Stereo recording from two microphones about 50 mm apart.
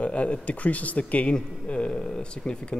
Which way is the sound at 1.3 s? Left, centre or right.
Centre.